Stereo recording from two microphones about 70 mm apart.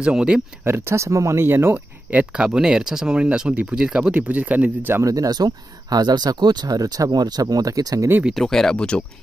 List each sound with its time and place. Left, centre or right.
0.0 s speech: centre
0.7 s speech: right
5.0 s speech: right
8.4 s speech: centre